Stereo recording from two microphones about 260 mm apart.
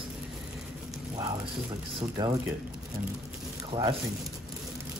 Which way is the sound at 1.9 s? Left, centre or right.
Centre.